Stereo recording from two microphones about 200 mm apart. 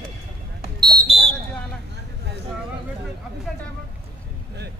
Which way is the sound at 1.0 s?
30° right (ahead or behind).